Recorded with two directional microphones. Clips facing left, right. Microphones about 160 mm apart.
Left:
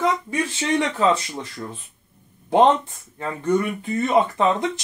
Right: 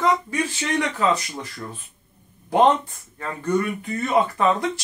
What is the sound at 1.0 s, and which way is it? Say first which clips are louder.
Speech: left 2 dB; 25° left (ahead or behind).